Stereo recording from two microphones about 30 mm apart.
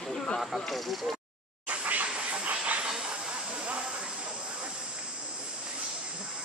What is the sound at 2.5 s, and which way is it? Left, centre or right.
Train, right.